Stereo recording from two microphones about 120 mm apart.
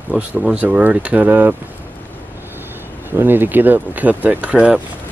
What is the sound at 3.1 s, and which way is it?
Speech, 20° right (ahead or behind).